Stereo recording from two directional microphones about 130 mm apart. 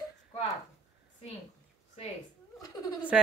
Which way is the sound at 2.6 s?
30° left (ahead or behind).